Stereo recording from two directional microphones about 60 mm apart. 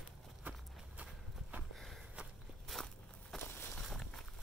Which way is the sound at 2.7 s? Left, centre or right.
Centre.